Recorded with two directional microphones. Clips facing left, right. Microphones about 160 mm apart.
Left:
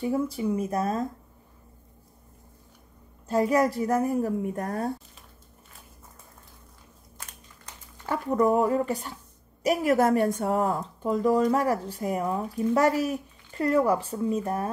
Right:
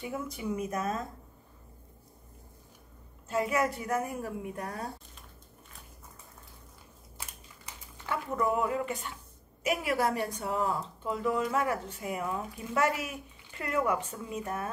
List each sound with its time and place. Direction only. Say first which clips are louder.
0.0 s speech: left 9 dB; 35° left (ahead or behind)
3.3 s speech: left 6 dB; 35° left (ahead or behind)
8.1 s speech: left 7 dB; 40° left (ahead or behind)